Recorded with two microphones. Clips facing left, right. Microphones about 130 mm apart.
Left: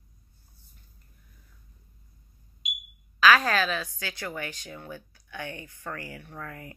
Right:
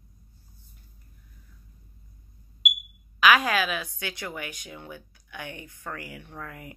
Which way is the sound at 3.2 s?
15° right (ahead or behind).